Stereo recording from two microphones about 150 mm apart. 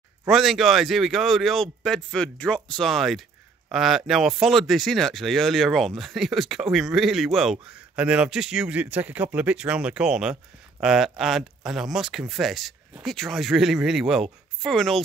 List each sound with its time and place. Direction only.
0.3 s a man's voice: centre (ahead or behind)